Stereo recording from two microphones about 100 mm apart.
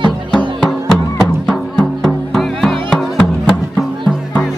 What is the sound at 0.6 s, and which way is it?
Music, centre (ahead or behind).